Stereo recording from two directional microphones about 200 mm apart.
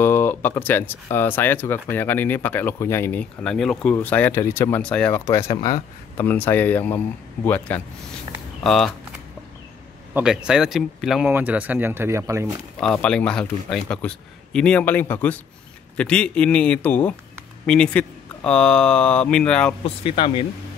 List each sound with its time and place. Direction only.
0.0 s a man's voice: 10° left (ahead or behind)
10.1 s speech: 5° right (ahead or behind)
12.8 s a man's voice: 5° left (ahead or behind)
19.8 s speech: 25° left (ahead or behind)